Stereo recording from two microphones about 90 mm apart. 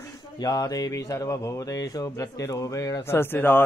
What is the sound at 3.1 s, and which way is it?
Speech, 25° left (ahead or behind).